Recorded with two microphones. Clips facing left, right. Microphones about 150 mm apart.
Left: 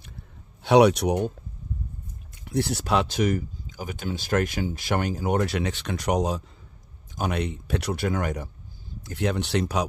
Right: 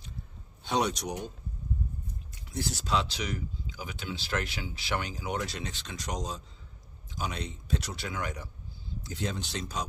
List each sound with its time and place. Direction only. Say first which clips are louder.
0.7 s speech: left 12 dB; 65° left (ahead or behind)
2.4 s speech: left 9 dB; 65° left (ahead or behind)
9.0 s speech: left 9 dB; 65° left (ahead or behind)